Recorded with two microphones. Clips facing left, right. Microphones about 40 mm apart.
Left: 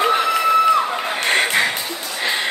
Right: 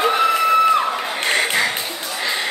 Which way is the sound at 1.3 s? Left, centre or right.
Left.